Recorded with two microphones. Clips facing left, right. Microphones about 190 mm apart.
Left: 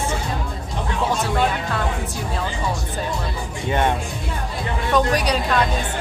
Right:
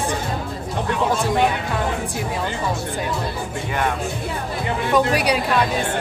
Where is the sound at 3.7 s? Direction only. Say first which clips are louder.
Left 4 dB; 25° left (ahead or behind).